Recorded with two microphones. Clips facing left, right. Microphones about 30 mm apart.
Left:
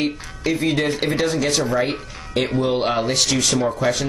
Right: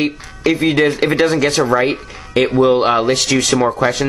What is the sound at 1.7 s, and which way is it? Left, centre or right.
Speech, right.